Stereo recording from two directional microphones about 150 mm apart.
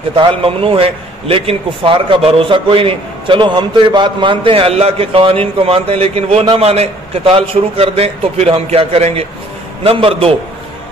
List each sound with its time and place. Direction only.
0.1 s a man's voice: 35° right (ahead or behind)